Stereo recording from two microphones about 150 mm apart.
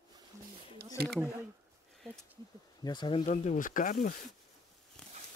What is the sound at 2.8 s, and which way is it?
Speech, 30° left (ahead or behind).